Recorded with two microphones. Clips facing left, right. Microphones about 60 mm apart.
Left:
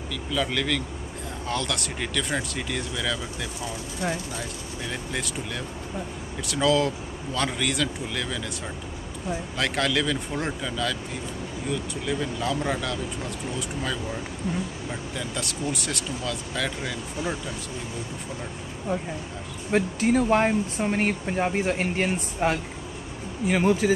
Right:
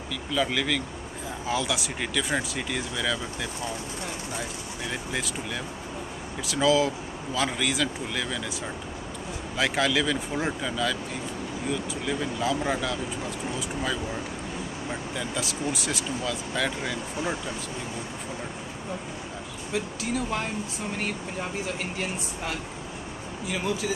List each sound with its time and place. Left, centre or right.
0.3 s speech: centre
5.1 s speech: centre
9.6 s speech: centre
19.7 s speech: left